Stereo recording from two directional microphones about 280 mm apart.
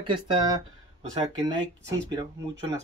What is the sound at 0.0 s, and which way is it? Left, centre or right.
Speech, centre.